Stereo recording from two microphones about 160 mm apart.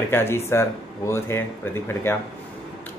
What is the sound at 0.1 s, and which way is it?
Speech, 15° left (ahead or behind).